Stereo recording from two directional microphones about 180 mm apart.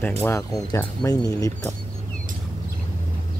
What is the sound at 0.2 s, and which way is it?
Speech, 15° left (ahead or behind).